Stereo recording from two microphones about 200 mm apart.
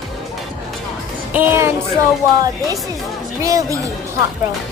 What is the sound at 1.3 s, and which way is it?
Speech, 10° right (ahead or behind).